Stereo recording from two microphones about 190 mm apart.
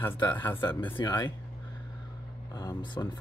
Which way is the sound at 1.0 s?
20° left (ahead or behind).